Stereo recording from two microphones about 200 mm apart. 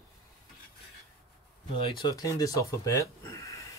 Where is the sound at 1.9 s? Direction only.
20° left (ahead or behind).